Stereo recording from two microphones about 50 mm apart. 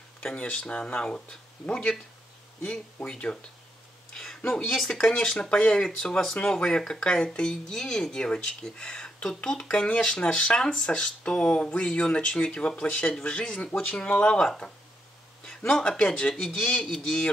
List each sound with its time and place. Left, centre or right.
0.7 s speech: left
4.1 s a sound: centre
4.4 s speech: centre
4.6 s speech: centre
5.0 s speech: left
10.3 s speech: left
10.6 s speech: centre
15.7 s speech: centre